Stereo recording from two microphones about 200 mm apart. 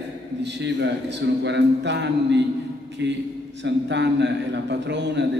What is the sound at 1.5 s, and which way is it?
Speech, 60° right (ahead or behind).